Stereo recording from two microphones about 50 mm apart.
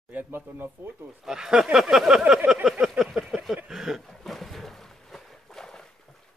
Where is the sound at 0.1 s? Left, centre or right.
Right.